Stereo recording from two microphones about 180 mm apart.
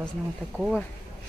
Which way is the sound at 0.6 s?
Centre (ahead or behind).